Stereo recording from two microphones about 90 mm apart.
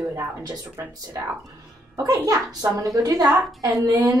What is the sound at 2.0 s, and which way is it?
A woman's voice, 40° right (ahead or behind).